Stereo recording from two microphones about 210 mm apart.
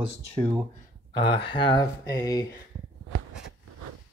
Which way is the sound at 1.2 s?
25° left (ahead or behind).